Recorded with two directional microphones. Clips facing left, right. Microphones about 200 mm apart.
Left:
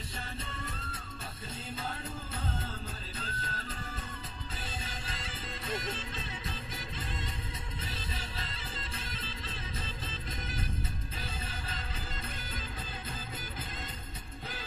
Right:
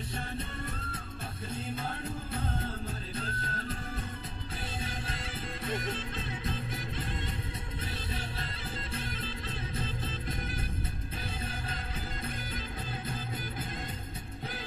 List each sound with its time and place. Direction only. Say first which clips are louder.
3.2 s music: right 3 dB; 55° right (ahead or behind)
4.8 s music: right 4 dB; 55° right (ahead or behind)
8.4 s music: right 3 dB; 55° right (ahead or behind)